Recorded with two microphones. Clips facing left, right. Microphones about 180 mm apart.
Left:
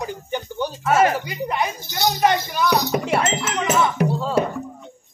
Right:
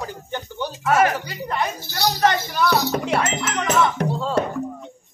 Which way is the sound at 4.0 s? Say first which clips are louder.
Left 2 dB; 5° left (ahead or behind).